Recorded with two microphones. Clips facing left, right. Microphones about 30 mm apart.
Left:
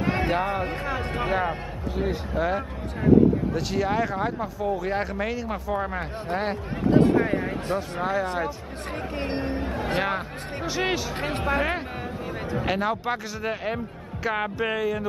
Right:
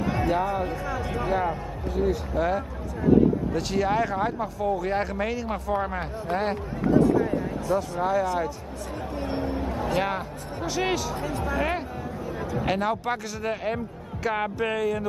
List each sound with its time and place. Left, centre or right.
0.0 s a sound: left
1.4 s speech: left
2.4 s speech: centre
3.5 s speech: centre
6.9 s speech: left
8.0 s speech: left
9.1 s speech: left
10.0 s speech: centre
11.1 s speech: left
12.6 s speech: centre